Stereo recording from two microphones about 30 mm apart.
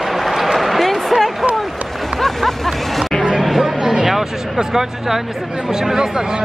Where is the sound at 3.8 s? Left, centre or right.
Centre.